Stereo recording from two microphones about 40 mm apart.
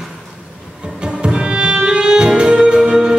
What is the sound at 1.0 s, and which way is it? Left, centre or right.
Music, right.